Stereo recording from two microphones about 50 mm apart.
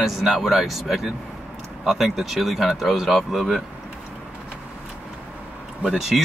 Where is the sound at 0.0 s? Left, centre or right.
Centre.